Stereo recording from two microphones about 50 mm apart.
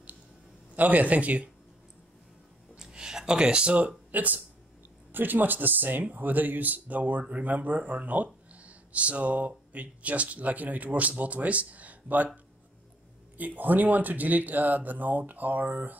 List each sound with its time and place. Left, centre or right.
0.7 s a man's voice: right
2.8 s speech: centre; by 12.3 s right
13.4 s speech: right